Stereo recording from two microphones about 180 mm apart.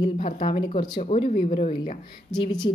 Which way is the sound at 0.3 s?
35° left (ahead or behind).